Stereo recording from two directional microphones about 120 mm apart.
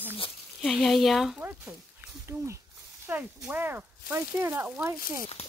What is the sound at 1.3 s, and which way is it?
Speech, 10° right (ahead or behind).